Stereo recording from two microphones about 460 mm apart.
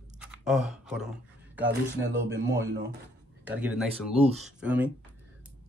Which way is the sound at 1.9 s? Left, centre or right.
Right.